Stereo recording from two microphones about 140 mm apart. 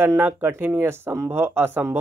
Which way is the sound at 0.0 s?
15° right (ahead or behind).